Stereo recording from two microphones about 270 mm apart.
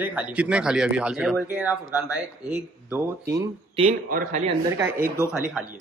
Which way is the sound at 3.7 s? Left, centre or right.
Right.